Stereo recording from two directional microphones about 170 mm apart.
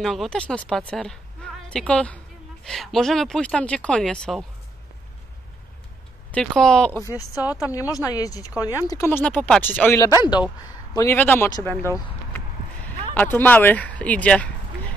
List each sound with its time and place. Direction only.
0.0 s speech: centre (ahead or behind)
6.3 s speech: 5° left (ahead or behind)
7.1 s speech: 20° left (ahead or behind)
11.8 s a sound: 15° left (ahead or behind)
13.1 s speech: 10° left (ahead or behind)